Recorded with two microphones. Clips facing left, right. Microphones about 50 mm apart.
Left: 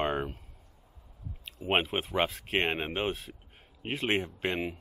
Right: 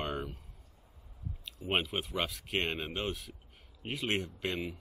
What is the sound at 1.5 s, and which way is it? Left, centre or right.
Speech, left.